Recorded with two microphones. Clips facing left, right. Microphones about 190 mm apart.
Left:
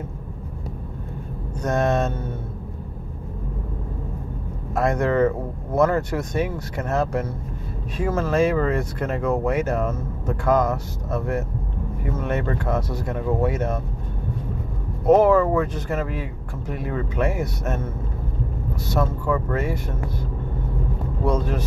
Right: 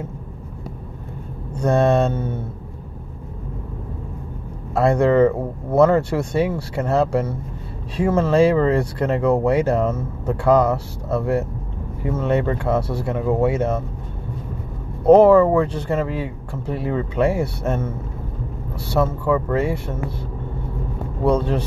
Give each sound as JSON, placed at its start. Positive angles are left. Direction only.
{"t": 1.6, "sound": "speech", "side_deg": -30}
{"t": 4.7, "sound": "speech", "side_deg": -30}
{"t": 15.0, "sound": "speech", "side_deg": -30}
{"t": 18.8, "sound": "speech", "side_deg": -30}